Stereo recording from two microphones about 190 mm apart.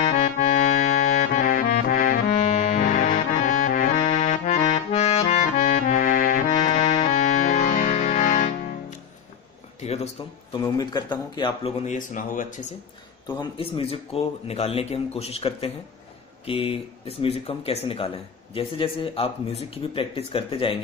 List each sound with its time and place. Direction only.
0.1 s accordion: 40° left (ahead or behind)
9.8 s a sound: 35° left (ahead or behind)
10.5 s speech: 20° left (ahead or behind); by 12.6 s 45° left (ahead or behind)
13.6 s speech: 30° left (ahead or behind)